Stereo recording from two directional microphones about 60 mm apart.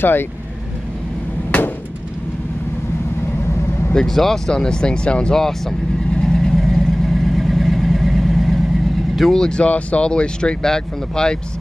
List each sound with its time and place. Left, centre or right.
0.0 s speech: left
1.5 s hammer: left
3.9 s vehicle: centre
9.1 s speech: centre